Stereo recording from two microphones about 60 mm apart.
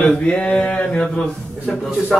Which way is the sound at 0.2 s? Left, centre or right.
Centre.